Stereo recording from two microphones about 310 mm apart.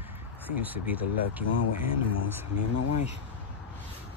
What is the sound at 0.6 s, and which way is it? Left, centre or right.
Speech, centre.